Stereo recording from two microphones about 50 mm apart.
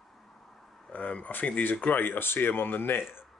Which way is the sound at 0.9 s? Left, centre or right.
Left.